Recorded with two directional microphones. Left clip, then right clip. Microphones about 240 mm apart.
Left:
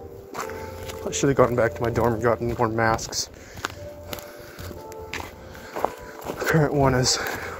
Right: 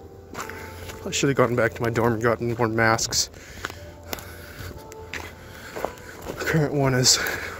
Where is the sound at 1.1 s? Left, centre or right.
Right.